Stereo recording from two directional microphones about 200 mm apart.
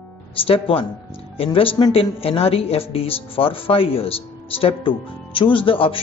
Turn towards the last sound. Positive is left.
turn(degrees=25)  # may be behind; listen again after turning